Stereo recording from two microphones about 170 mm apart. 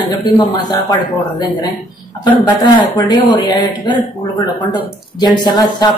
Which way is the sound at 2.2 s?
25° left (ahead or behind).